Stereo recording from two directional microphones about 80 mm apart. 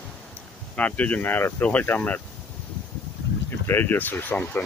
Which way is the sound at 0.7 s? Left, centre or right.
Centre.